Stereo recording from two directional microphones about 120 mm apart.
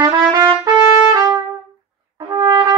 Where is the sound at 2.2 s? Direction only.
35° right (ahead or behind).